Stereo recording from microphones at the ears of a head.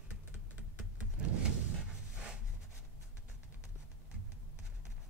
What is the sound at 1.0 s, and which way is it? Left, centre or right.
Power windows, right.